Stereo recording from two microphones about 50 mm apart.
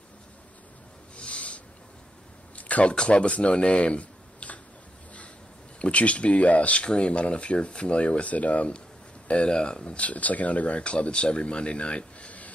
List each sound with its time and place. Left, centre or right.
1.1 s snort: left
2.5 s speech: left
5.8 s speech: left